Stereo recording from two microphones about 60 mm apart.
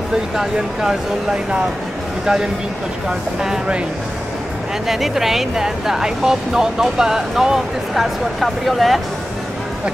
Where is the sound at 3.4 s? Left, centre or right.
Centre.